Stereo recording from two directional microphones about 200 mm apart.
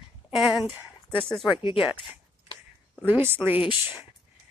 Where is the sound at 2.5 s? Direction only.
25° left (ahead or behind).